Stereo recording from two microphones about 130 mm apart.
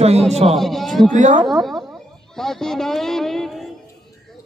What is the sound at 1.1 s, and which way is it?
Speech, 70° right (ahead or behind).